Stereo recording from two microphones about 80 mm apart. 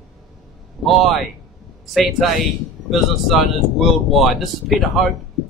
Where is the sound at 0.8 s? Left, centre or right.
Centre.